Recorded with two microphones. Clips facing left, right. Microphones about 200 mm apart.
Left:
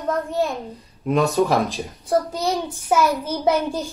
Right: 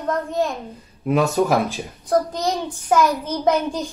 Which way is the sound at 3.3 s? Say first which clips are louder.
Right 1 dB; 10° left (ahead or behind).